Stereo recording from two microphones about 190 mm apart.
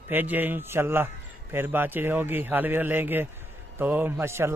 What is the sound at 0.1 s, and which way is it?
Speech, 10° right (ahead or behind).